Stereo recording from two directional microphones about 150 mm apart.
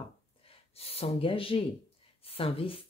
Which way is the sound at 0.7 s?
40° left (ahead or behind).